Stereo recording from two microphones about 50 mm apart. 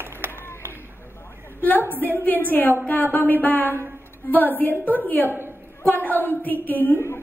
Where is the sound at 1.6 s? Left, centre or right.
Left.